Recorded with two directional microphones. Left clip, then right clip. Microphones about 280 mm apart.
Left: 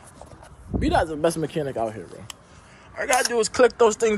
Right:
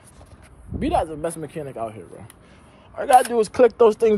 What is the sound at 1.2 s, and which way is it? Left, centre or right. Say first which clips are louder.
Speech: left 5 dB; left.